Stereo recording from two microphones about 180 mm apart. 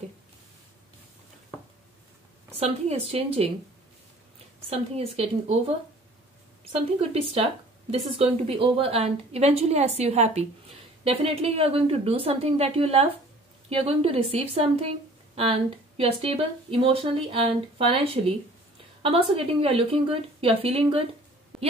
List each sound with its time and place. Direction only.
2.5 s speech: 35° right (ahead or behind)
4.6 s speech: 35° right (ahead or behind)
6.6 s speech: 35° right (ahead or behind)